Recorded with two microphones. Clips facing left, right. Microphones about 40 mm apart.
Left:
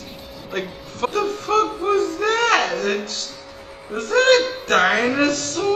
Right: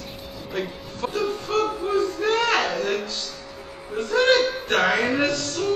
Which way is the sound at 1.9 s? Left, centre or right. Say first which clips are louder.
Left 3 dB; left.